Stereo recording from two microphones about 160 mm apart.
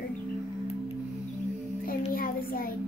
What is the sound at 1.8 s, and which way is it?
Speech, 65° left (ahead or behind).